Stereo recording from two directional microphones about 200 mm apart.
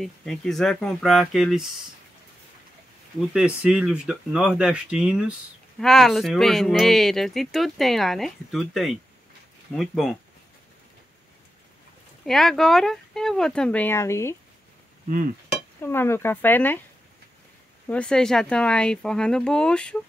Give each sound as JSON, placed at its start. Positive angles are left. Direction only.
{"t": 0.0, "sound": "speech", "side_deg": 0}
{"t": 3.3, "sound": "speech", "side_deg": -5}
{"t": 12.3, "sound": "speech", "side_deg": 0}
{"t": 15.8, "sound": "speech", "side_deg": 10}
{"t": 17.8, "sound": "speech", "side_deg": 5}